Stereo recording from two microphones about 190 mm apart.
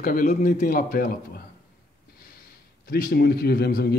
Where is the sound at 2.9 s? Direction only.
50° left (ahead or behind).